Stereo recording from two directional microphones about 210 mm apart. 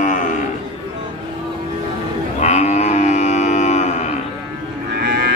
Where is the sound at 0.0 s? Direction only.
35° left (ahead or behind).